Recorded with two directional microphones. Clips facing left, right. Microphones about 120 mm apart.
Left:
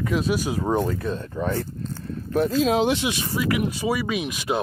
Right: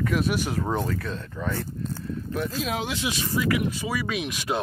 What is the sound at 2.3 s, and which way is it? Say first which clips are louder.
Speech: left 10 dB; 35° left (ahead or behind).